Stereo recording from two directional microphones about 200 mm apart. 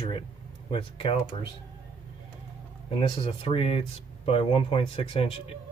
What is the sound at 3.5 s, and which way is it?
Speech, 25° left (ahead or behind).